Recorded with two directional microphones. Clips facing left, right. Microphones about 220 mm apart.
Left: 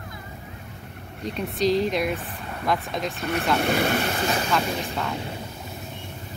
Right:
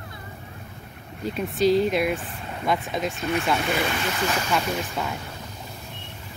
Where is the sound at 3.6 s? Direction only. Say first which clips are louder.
Left 3 dB; 45° left (ahead or behind).